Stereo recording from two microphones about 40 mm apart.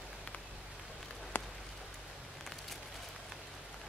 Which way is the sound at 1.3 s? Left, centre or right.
Left.